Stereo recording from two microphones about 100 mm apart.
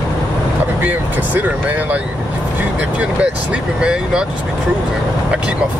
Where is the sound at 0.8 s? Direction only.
20° right (ahead or behind).